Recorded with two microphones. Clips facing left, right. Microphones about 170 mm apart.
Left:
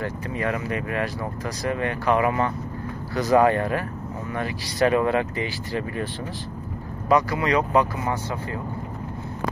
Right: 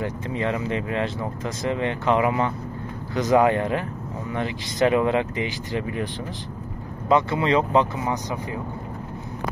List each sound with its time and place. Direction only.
0.0 s speech: 20° right (ahead or behind)
7.1 s speech: 25° right (ahead or behind)